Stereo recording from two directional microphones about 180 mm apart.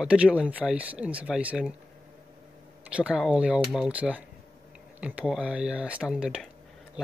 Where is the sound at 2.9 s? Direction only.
5° right (ahead or behind).